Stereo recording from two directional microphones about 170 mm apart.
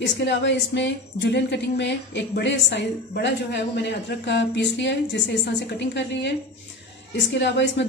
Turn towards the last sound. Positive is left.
turn(degrees=90)